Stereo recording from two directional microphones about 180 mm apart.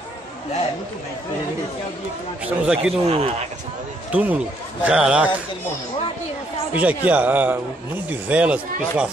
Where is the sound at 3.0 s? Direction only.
35° right (ahead or behind).